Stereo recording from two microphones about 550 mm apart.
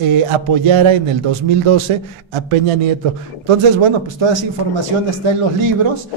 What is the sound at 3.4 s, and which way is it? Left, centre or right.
Speech, right.